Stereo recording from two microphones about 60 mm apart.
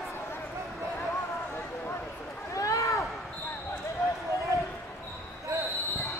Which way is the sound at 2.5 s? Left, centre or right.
Left.